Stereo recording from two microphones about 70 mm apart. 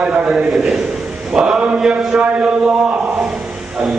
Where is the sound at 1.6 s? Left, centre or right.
Centre.